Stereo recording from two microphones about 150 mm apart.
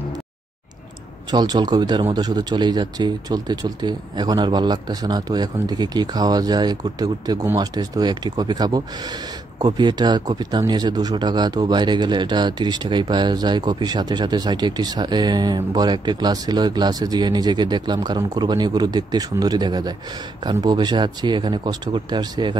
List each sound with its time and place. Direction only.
1.3 s speech: 30° right (ahead or behind)